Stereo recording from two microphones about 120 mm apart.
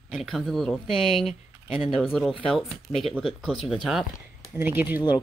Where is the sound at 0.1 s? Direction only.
Centre (ahead or behind).